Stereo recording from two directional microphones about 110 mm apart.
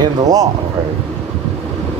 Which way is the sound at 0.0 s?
35° right (ahead or behind).